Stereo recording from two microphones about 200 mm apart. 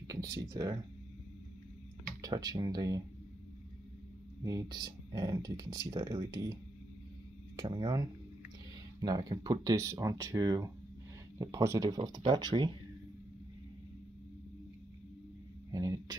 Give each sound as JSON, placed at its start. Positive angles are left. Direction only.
{"t": 0.1, "sound": "speech", "side_deg": -15}
{"t": 2.2, "sound": "speech", "side_deg": -20}
{"t": 4.4, "sound": "speech", "side_deg": -20}
{"t": 7.5, "sound": "speech", "side_deg": -20}
{"t": 15.7, "sound": "speech", "side_deg": -20}